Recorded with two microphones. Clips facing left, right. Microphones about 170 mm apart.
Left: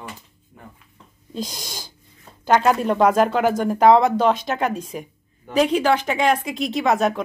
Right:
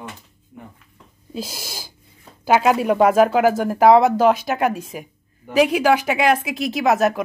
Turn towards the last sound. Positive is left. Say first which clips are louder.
# right 2 dB
turn(degrees=-5)  # may be behind; listen again after turning